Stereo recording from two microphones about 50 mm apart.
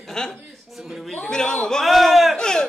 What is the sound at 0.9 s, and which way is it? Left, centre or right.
Speech, centre.